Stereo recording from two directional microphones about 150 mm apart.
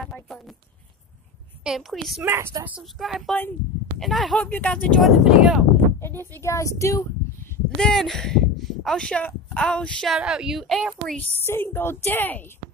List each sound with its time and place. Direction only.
0.0 s a sound: centre (ahead or behind)
1.6 s a woman's voice: centre (ahead or behind)
2.2 s speech: 15° right (ahead or behind)
2.8 s a woman's voice: centre (ahead or behind)
5.0 s speech: centre (ahead or behind)
5.9 s speech: 15° left (ahead or behind)
7.7 s speech: 5° left (ahead or behind)
11.3 s a woman's voice: 15° left (ahead or behind)